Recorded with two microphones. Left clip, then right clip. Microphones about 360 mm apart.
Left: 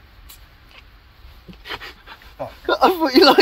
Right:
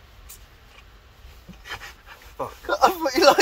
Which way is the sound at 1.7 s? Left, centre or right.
Left.